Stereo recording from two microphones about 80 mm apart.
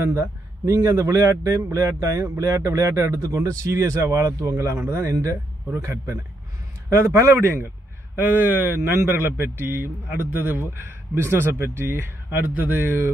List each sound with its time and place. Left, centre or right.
0.0 s a man's voice: right